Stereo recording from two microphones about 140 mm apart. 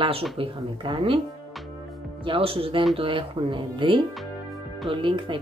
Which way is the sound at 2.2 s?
40° right (ahead or behind).